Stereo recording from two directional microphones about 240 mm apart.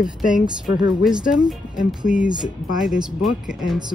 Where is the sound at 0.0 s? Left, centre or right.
Left.